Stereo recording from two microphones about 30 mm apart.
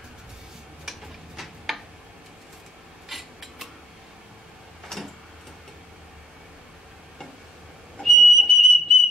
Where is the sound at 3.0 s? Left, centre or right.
Centre.